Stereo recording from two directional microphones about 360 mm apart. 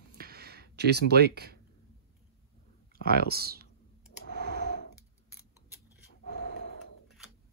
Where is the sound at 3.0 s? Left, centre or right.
Right.